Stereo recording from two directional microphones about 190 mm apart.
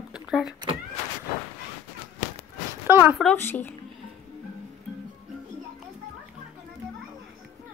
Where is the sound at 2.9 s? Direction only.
10° right (ahead or behind).